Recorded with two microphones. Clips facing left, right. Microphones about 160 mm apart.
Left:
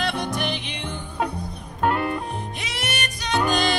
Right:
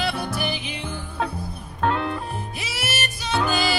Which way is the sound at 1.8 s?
10° left (ahead or behind).